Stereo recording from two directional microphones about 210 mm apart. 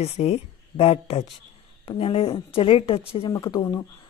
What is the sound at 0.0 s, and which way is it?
Speech, 30° left (ahead or behind).